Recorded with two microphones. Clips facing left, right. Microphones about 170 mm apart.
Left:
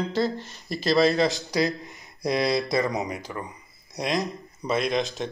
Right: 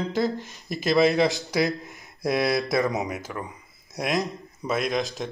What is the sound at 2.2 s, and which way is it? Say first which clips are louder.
A man's voice: even; 5° right (ahead or behind).